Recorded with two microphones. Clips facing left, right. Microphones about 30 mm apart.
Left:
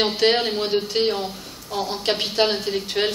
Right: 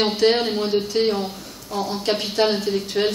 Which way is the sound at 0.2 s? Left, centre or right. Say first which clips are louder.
Right 1 dB; centre.